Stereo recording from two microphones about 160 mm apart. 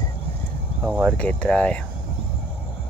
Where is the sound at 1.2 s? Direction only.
5° left (ahead or behind).